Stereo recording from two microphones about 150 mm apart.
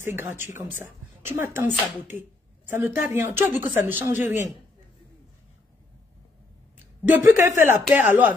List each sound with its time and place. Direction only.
0.0 s a woman's voice: 15° right (ahead or behind)
2.7 s a woman's voice: 15° right (ahead or behind)
7.1 s a woman's voice: 15° right (ahead or behind)